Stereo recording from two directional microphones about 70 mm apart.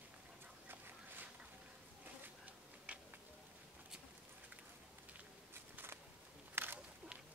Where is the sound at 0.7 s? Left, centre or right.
Right.